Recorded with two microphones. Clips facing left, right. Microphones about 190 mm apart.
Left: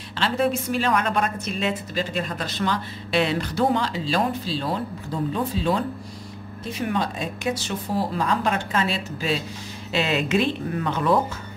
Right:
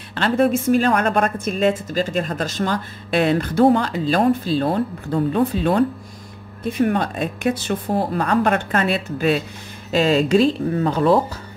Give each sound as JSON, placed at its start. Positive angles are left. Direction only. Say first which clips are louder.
{"t": 0.1, "sound": "a woman's voice", "louder": "right 5 dB", "side_deg": -50}
{"t": 9.8, "sound": "speech", "louder": "right 7 dB", "side_deg": -40}